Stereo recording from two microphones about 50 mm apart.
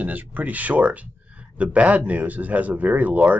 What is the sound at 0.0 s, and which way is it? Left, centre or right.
Speech, right.